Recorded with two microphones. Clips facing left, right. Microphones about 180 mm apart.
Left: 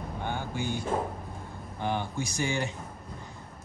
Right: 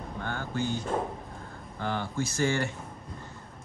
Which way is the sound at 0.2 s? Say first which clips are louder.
Right 1 dB; 15° left (ahead or behind).